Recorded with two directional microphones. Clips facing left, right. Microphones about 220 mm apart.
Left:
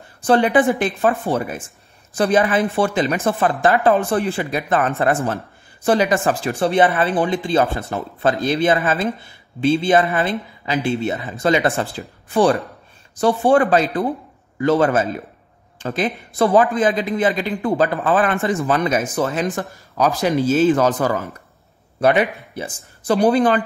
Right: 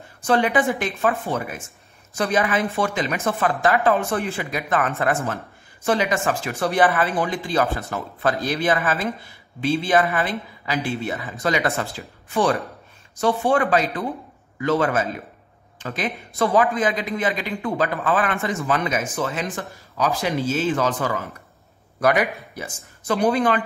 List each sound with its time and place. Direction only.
0.2 s speech: 30° left (ahead or behind)
13.2 s speech: 35° left (ahead or behind)
22.0 s speech: 25° left (ahead or behind)